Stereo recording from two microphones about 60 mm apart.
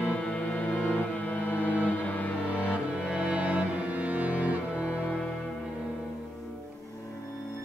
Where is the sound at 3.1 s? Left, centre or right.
Right.